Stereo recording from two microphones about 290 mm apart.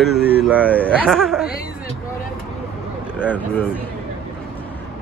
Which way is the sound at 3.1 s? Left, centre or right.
Centre.